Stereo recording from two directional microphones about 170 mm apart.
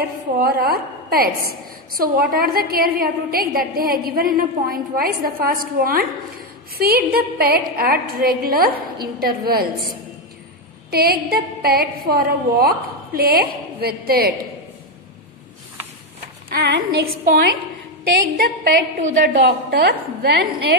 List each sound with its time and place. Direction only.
0.4 s a woman's voice: 60° right (ahead or behind)
16.4 s a woman's voice: 80° right